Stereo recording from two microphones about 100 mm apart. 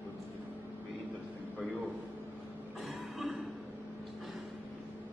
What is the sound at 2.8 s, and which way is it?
Cough, centre (ahead or behind).